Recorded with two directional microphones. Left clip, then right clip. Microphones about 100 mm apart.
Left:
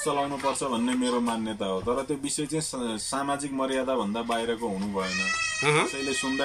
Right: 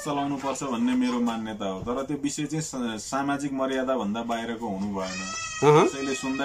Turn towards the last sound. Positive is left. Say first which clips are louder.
# right 5 dB
turn(degrees=-60)  # may be behind; listen again after turning